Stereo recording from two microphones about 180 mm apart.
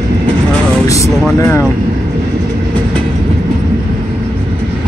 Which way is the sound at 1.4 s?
15° left (ahead or behind).